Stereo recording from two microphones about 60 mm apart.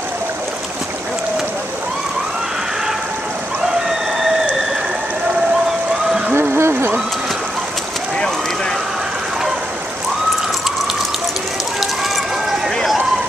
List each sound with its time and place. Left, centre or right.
4.2 s rain on surface: centre
6.4 s a sound: right
12.4 s run: centre